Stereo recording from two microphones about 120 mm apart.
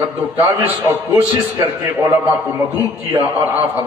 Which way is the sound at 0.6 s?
15° right (ahead or behind).